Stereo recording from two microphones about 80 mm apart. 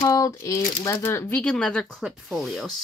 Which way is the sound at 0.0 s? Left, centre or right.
Left.